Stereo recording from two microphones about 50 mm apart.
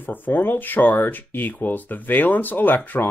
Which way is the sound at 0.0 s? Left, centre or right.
Left.